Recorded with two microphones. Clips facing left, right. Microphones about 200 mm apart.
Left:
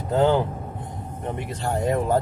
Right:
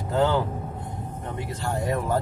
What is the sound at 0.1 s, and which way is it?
Vehicle, 20° left (ahead or behind).